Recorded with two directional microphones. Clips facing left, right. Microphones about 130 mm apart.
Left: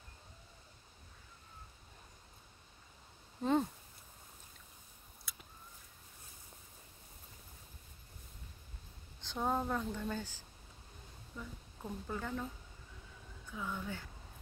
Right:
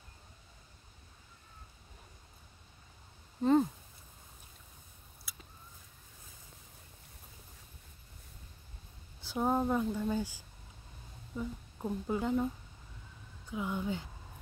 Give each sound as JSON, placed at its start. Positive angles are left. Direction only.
{"t": 3.4, "sound": "speech", "side_deg": 0}
{"t": 5.3, "sound": "a sound", "side_deg": -5}
{"t": 9.2, "sound": "speech", "side_deg": -10}
{"t": 13.5, "sound": "speech", "side_deg": -15}